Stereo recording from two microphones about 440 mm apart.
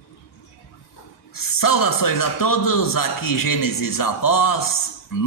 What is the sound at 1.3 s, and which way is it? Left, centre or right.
A man's voice, left.